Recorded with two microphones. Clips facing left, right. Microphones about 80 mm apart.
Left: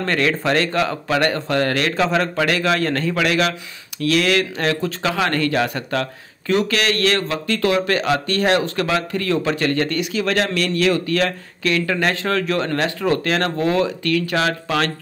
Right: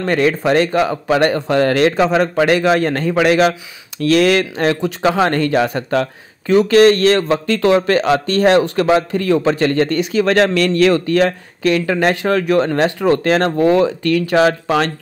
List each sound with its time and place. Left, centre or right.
0.0 s speech: centre